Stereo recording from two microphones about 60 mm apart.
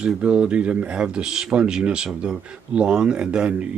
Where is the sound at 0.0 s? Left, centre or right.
Centre.